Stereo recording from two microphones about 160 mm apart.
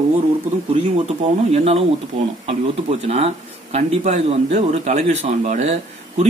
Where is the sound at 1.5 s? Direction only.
40° right (ahead or behind).